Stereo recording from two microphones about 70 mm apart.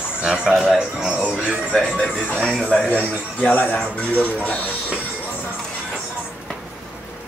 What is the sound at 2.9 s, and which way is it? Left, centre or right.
Speech, left.